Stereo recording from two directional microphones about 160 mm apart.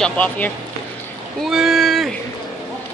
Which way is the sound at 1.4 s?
5° right (ahead or behind).